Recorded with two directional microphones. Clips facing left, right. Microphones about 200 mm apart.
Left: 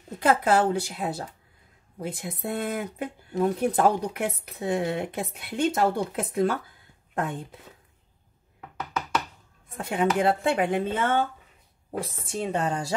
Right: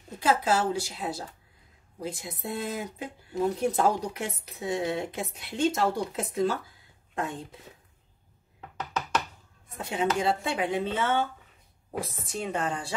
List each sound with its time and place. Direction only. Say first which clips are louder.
0.2 s speech: left 4 dB; 55° left (ahead or behind)
9.8 s speech: left 3 dB; 55° left (ahead or behind)
12.0 s speech: left 3 dB; 30° left (ahead or behind)